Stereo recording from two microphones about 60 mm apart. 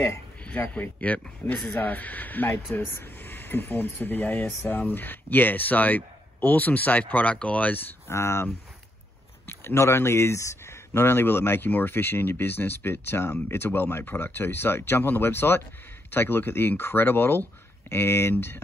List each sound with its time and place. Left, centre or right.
0.6 s a man's voice: left
8.1 s speech: left
9.5 s speech: left